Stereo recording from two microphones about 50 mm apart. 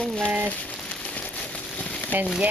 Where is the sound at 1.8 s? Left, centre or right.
Left.